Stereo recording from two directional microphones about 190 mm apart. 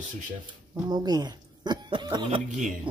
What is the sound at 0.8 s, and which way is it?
Speech, 20° right (ahead or behind).